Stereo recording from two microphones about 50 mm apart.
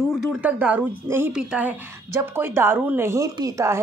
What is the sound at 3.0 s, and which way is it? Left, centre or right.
Speech, right.